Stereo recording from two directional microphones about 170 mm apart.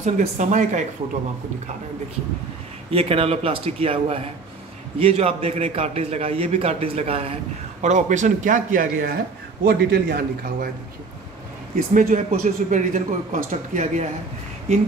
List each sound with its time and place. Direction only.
0.0 s a man's voice: 45° right (ahead or behind)
2.9 s a man's voice: 35° right (ahead or behind)
7.8 s a man's voice: 45° right (ahead or behind)
9.7 s a man's voice: 65° right (ahead or behind)
11.9 s a man's voice: 50° right (ahead or behind)